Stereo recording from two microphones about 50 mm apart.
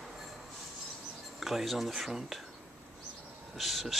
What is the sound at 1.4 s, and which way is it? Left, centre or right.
Speech, centre.